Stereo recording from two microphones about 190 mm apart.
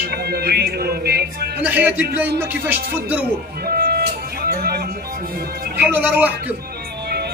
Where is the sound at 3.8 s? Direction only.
55° right (ahead or behind).